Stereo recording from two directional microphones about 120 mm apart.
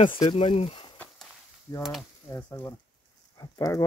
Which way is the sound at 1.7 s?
25° left (ahead or behind).